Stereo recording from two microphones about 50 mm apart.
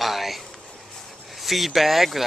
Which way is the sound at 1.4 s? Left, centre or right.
Centre.